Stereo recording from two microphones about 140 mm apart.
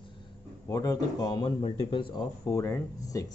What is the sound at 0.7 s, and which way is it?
Speech, 25° left (ahead or behind).